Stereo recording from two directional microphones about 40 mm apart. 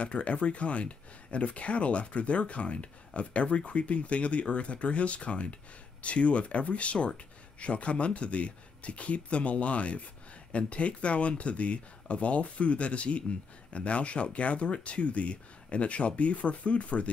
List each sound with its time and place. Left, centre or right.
0.0 s speech: left